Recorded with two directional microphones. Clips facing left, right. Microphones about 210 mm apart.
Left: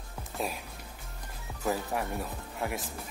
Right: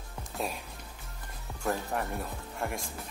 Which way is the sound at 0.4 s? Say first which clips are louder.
Left 1 dB; centre (ahead or behind).